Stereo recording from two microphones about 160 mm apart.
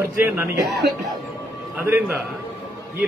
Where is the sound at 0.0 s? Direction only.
15° right (ahead or behind).